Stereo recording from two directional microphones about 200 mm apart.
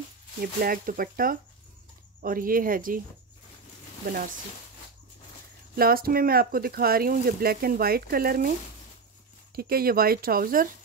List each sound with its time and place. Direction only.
0.4 s speech: 45° right (ahead or behind)
4.0 s speech: 45° right (ahead or behind)
5.8 s speech: 50° right (ahead or behind)
9.6 s speech: 50° right (ahead or behind)